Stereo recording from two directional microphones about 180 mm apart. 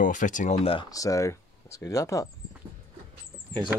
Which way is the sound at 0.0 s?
45° left (ahead or behind).